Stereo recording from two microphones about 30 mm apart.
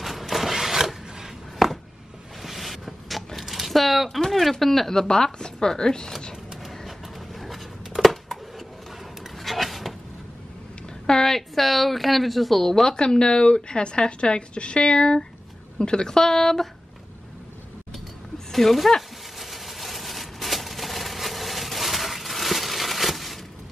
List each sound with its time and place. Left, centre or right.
0.0 s chopping: centre
2.4 s vehicle: centre
3.3 s a sound: centre
4.3 s speech: centre
5.4 s speech: left
7.3 s a sound: centre
11.2 s speech: centre
12.9 s speech: left
16.2 s speech: centre
18.5 s speech: centre
19.3 s a sound: centre